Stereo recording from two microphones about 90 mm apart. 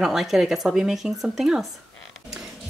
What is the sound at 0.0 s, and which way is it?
Speech, 5° right (ahead or behind).